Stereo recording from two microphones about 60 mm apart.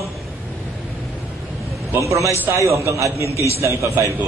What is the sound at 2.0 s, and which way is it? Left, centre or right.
A man's voice, right.